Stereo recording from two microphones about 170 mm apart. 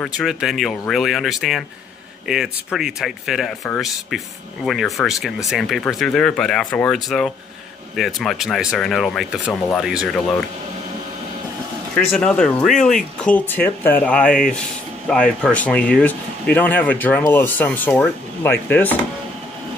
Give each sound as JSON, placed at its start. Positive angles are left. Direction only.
{"t": 0.2, "sound": "speech", "side_deg": 0}
{"t": 4.6, "sound": "speech", "side_deg": 0}
{"t": 11.9, "sound": "speech", "side_deg": 5}